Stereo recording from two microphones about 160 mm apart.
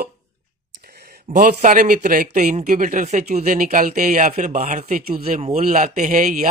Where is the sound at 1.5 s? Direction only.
55° right (ahead or behind).